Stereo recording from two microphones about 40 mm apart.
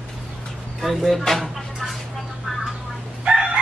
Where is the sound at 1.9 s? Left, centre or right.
Centre.